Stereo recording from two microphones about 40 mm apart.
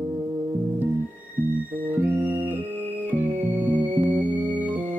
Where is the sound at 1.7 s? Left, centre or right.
Right.